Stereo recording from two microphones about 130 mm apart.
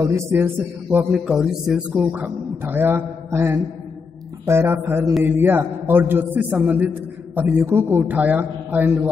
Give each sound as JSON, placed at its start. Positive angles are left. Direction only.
{"t": 0.0, "sound": "a man's voice", "side_deg": -20}
{"t": 1.1, "sound": "a man's voice", "side_deg": -5}